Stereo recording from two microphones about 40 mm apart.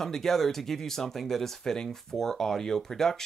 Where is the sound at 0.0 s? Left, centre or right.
Centre.